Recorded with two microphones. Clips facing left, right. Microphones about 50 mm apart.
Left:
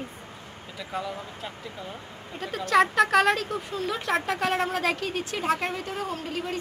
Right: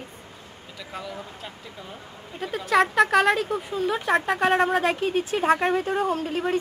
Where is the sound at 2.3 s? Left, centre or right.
Centre.